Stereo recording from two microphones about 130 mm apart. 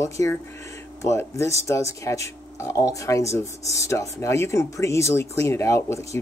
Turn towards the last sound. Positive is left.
turn(degrees=20)  # may be behind; listen again after turning